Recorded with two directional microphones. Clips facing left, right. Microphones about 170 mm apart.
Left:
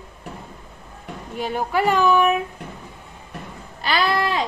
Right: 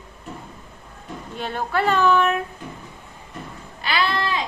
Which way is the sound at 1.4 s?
10° left (ahead or behind).